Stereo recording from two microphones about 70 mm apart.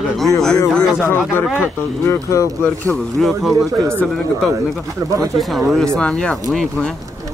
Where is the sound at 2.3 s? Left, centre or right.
Left.